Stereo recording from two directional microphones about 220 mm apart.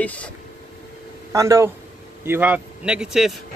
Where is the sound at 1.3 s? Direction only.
15° right (ahead or behind).